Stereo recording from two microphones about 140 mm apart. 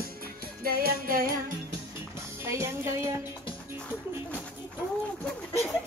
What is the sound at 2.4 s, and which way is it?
Music, 20° right (ahead or behind).